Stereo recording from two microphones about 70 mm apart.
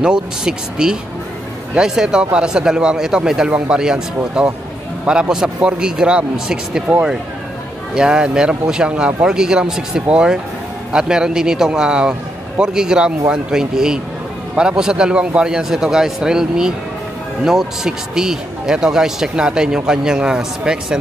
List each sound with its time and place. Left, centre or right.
0.0 s speech: centre
7.9 s speech: centre